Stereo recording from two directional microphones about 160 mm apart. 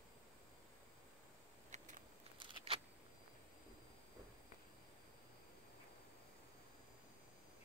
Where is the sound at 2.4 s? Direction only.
35° right (ahead or behind).